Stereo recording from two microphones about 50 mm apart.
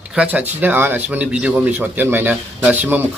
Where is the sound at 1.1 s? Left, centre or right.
Right.